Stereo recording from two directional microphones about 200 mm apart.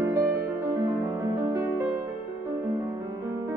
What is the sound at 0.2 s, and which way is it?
Music, 10° right (ahead or behind).